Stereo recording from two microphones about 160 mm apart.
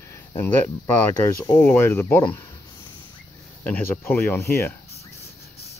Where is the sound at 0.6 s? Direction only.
20° left (ahead or behind).